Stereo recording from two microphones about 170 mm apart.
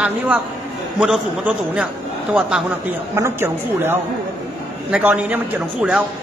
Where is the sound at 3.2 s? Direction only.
15° right (ahead or behind).